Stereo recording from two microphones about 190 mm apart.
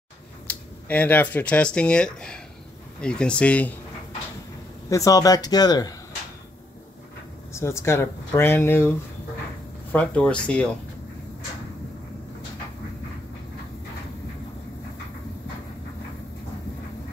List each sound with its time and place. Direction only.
0.5 s speech: 10° left (ahead or behind)
4.8 s speech: 15° left (ahead or behind)
7.5 s speech: 15° left (ahead or behind)
9.9 s speech: 5° left (ahead or behind)